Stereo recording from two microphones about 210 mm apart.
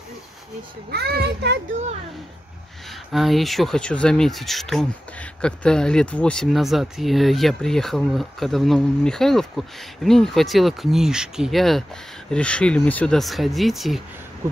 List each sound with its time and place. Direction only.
0.9 s a child's voice: 50° right (ahead or behind)
3.1 s speech: centre (ahead or behind)